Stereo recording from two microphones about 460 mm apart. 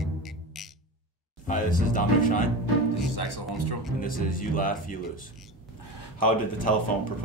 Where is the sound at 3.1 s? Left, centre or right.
Left.